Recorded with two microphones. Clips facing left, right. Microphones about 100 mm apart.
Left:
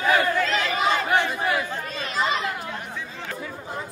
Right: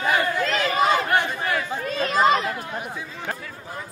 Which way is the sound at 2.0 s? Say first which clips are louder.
Right 7 dB; 45° right (ahead or behind).